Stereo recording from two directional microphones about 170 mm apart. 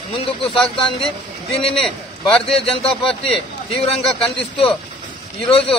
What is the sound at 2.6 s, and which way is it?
Speech, 35° left (ahead or behind).